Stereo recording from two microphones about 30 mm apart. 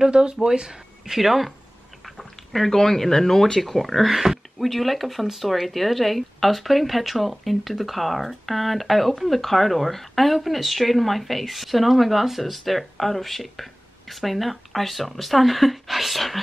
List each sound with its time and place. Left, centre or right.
0.0 s speech: right
0.5 s speech: right
1.1 s speech: centre
2.0 s speech: centre
3.6 s speech: centre